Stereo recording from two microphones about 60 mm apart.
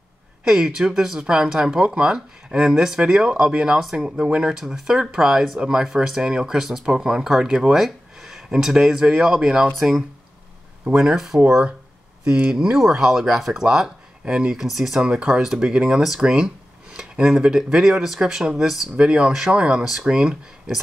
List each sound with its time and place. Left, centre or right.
0.4 s speech: centre
5.6 s speech: centre
14.6 s speech: centre
18.9 s speech: centre